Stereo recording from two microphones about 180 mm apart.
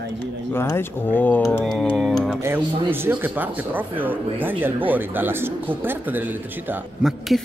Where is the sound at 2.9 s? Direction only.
10° right (ahead or behind).